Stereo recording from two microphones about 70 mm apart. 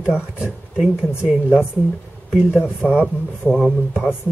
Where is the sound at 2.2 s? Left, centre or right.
Centre.